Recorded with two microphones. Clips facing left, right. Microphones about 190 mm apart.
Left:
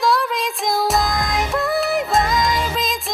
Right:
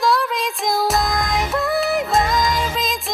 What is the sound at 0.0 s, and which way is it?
Music, centre (ahead or behind).